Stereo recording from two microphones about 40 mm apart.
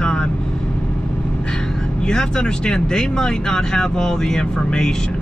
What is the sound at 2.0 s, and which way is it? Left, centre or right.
Speech, centre.